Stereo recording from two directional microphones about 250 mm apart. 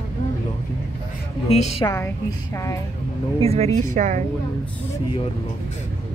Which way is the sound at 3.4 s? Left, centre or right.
Right.